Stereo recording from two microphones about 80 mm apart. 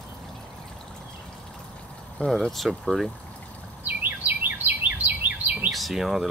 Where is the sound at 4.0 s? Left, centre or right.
Right.